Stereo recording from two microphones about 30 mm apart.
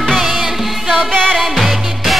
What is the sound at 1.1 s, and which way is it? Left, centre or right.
Music, left.